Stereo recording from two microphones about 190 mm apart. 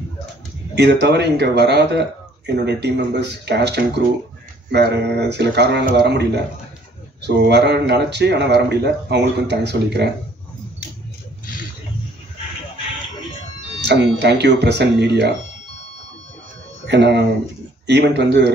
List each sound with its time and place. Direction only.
0.7 s speech: 60° right (ahead or behind)
13.7 s speech: 60° right (ahead or behind)
16.8 s speech: 65° right (ahead or behind)